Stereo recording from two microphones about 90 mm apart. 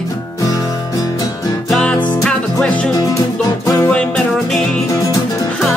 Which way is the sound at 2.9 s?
40° left (ahead or behind).